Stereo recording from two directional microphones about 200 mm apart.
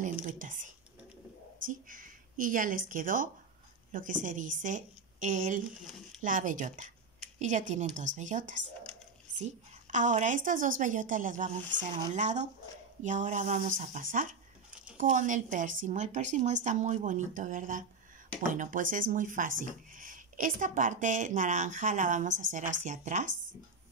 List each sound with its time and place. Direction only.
0.0 s a woman's voice: 40° right (ahead or behind)